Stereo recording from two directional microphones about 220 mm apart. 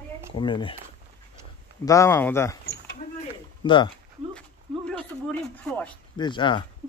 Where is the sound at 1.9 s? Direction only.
10° left (ahead or behind).